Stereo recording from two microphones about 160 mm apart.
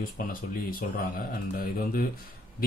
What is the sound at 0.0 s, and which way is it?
Speech, 60° left (ahead or behind).